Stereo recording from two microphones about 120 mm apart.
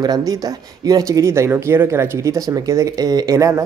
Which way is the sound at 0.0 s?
30° right (ahead or behind).